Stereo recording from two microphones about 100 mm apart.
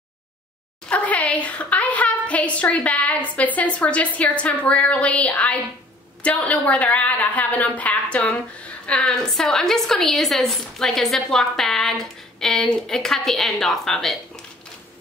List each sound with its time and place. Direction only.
0.8 s a woman's voice: 15° left (ahead or behind)